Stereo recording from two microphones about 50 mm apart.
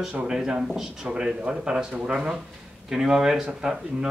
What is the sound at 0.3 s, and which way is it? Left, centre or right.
Speech, centre.